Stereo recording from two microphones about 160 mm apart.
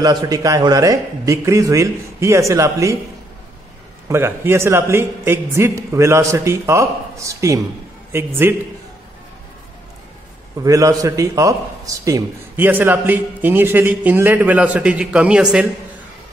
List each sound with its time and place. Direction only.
0.0 s a man's voice: 25° right (ahead or behind)
4.1 s a man's voice: 15° right (ahead or behind)
10.6 s a man's voice: 20° right (ahead or behind)